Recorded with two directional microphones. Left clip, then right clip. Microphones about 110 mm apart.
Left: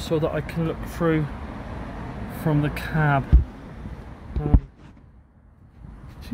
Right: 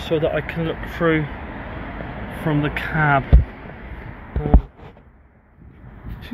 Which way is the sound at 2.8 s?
15° left (ahead or behind).